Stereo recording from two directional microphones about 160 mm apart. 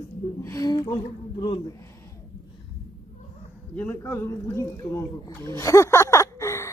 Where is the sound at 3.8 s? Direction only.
15° left (ahead or behind).